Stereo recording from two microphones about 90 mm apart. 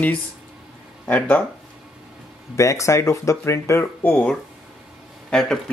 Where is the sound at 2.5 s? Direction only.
35° left (ahead or behind).